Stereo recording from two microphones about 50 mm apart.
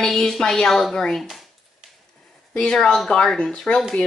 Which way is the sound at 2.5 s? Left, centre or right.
Centre.